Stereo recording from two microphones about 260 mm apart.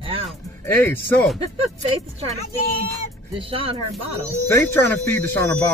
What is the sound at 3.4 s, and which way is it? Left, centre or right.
Speech, right.